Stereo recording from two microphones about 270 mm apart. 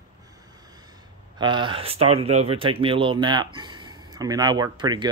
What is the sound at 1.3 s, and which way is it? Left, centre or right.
Speech, centre.